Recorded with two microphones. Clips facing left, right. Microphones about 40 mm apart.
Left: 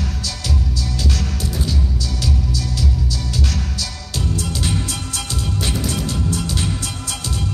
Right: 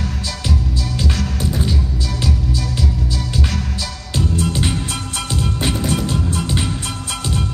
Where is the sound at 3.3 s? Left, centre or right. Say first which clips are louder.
Right 2 dB; right.